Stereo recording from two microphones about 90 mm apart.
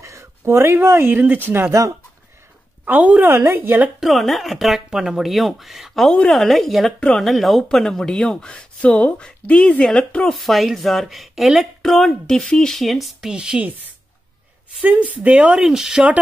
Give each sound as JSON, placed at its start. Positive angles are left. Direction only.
{"t": 0.0, "sound": "speech", "side_deg": -35}
{"t": 1.7, "sound": "speech", "side_deg": -35}
{"t": 2.8, "sound": "a woman's voice", "side_deg": -20}
{"t": 4.0, "sound": "speech", "side_deg": 0}
{"t": 14.8, "sound": "speech", "side_deg": -15}